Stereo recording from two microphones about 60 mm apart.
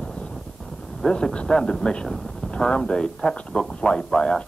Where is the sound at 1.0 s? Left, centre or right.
Centre.